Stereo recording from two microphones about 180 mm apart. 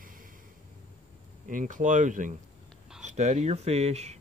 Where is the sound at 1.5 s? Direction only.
45° right (ahead or behind).